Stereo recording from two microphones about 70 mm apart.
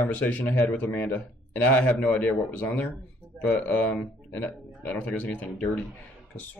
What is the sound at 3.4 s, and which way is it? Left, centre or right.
Speech, left.